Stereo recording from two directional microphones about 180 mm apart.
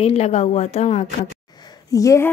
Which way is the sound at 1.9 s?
20° left (ahead or behind).